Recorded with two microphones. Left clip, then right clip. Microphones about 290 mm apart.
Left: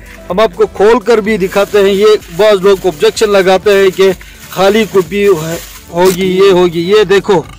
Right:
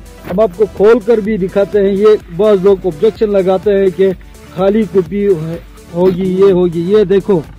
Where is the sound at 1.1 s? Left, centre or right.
Centre.